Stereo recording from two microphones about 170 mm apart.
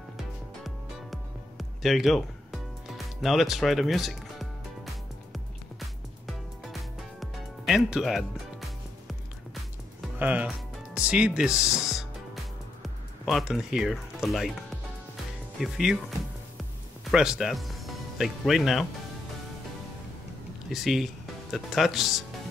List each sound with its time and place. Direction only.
0.2 s music: centre (ahead or behind)
10.1 s speech: 10° right (ahead or behind)
15.6 s speech: centre (ahead or behind)
17.1 s speech: 5° right (ahead or behind)
20.7 s speech: centre (ahead or behind)